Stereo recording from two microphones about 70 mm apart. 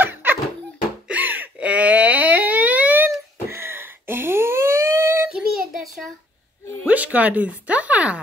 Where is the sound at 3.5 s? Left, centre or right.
Right.